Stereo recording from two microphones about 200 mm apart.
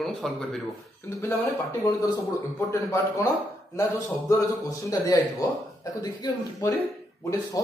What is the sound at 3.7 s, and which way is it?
A man's voice, 15° left (ahead or behind).